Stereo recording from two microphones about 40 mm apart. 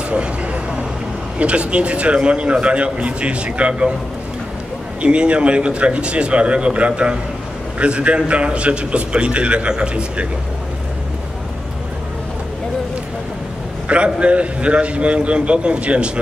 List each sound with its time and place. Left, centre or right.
0.1 s vehicle: right
1.4 s a man's voice: right
5.0 s a man's voice: right
13.8 s a man's voice: right